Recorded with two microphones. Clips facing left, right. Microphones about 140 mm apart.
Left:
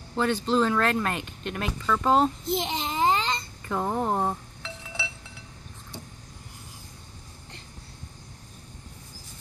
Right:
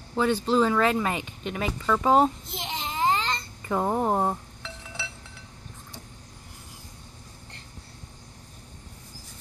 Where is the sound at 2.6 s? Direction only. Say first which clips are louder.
Left 4 dB; 25° left (ahead or behind).